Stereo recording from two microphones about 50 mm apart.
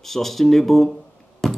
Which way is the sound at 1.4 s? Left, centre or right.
Centre.